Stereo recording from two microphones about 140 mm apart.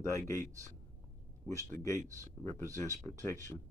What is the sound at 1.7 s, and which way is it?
Speech, 15° left (ahead or behind).